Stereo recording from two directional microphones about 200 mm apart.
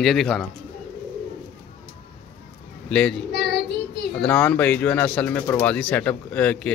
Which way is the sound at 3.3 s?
55° left (ahead or behind).